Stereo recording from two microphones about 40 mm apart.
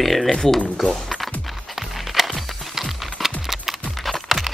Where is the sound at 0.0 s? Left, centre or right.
Centre.